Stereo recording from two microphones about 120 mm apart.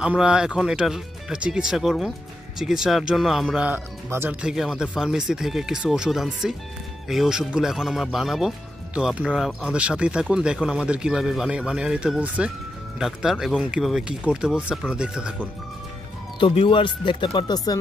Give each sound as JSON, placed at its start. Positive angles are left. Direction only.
{"t": 0.0, "sound": "speech", "side_deg": -10}
{"t": 3.5, "sound": "speech", "side_deg": -15}
{"t": 4.4, "sound": "speech", "side_deg": -5}
{"t": 16.3, "sound": "speech", "side_deg": 45}